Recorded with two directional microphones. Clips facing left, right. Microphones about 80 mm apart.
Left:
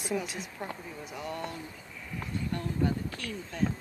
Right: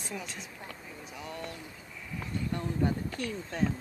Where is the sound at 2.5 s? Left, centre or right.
Right.